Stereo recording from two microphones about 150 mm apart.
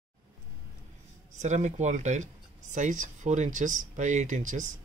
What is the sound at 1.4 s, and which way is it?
Speech, 50° right (ahead or behind).